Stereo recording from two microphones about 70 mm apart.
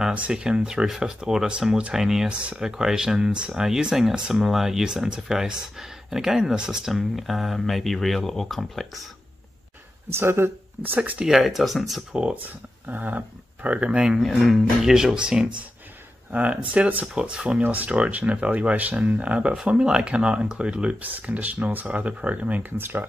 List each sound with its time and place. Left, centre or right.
0.1 s speech: centre
10.0 s speech: right
11.0 s speech: centre
11.2 s speech: centre
12.1 s speech: centre
14.2 s speech: centre; by 23.0 s right